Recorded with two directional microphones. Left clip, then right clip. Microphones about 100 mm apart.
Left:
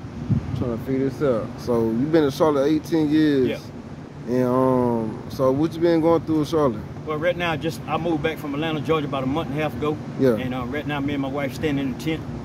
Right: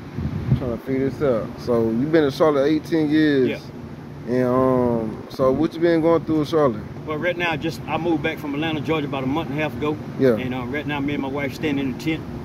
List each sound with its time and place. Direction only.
0.9 s speech: 30° left (ahead or behind)
1.7 s speech: 15° left (ahead or behind)
7.3 s speech: 45° left (ahead or behind)